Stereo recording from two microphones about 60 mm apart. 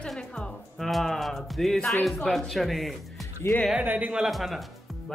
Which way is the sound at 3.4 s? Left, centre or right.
Left.